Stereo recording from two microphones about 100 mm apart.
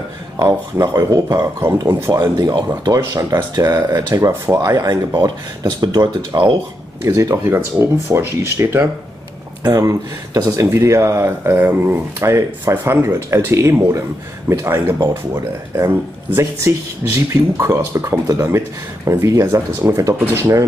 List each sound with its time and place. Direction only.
0.4 s speech: 40° right (ahead or behind)
2.4 s speech: 40° right (ahead or behind)
3.0 s speech: 25° right (ahead or behind)
3.5 s speech: 40° right (ahead or behind)
7.0 s speech: 30° right (ahead or behind)